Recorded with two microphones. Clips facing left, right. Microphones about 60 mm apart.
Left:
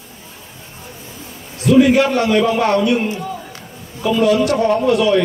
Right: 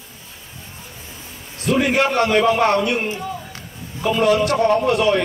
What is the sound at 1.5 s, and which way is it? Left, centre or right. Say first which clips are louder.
A man's voice: left 7 dB; right.